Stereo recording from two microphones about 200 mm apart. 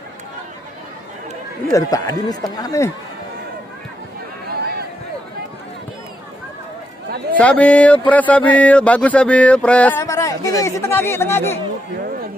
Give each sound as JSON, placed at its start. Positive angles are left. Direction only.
{"t": 1.7, "sound": "speech", "side_deg": 15}
{"t": 7.3, "sound": "speech", "side_deg": 5}